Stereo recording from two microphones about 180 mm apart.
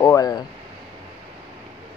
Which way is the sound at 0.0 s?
20° left (ahead or behind).